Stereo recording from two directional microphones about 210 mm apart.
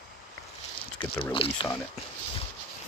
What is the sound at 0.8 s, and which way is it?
Speech, 25° left (ahead or behind).